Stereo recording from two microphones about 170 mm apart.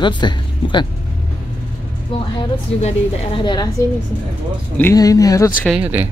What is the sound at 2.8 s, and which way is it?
Speech, 30° left (ahead or behind).